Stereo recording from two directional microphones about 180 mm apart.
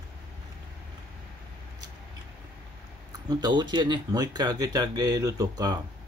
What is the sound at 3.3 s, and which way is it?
Speech, 25° right (ahead or behind).